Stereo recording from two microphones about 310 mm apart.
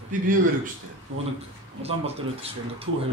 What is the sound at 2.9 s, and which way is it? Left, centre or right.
Speech, right.